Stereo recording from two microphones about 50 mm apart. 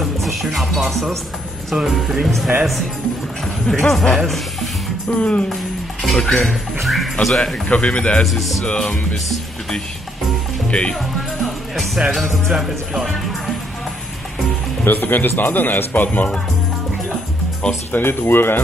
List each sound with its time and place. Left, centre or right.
0.0 s music: centre
1.9 s speech: centre
3.6 s speech: centre
5.1 s speech: left
6.0 s speech: centre
7.6 s speech: left
10.7 s speech: left
11.0 s speech: centre
14.9 s speech: left
17.9 s speech: left